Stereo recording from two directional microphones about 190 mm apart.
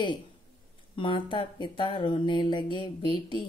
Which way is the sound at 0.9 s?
25° left (ahead or behind).